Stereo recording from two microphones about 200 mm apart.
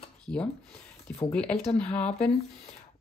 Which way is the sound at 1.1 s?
5° left (ahead or behind).